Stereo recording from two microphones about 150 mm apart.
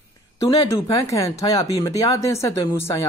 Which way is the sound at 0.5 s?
25° left (ahead or behind).